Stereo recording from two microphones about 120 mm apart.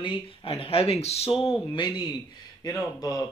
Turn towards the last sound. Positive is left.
turn(degrees=30)  # may be behind; listen again after turning